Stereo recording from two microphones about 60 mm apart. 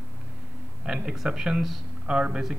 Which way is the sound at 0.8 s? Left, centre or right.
Centre.